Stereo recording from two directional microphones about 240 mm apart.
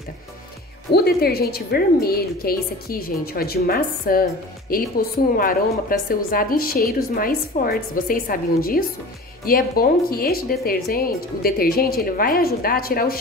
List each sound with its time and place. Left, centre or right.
0.9 s a woman's voice: left